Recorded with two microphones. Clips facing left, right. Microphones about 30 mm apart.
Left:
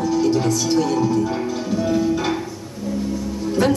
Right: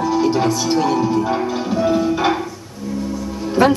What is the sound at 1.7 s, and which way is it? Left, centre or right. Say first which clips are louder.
Music: right 2 dB; right.